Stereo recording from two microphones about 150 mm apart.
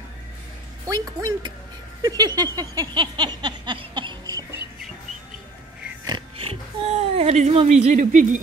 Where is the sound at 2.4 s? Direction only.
25° right (ahead or behind).